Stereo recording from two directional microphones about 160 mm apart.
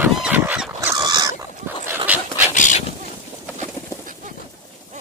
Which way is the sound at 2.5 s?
50° left (ahead or behind).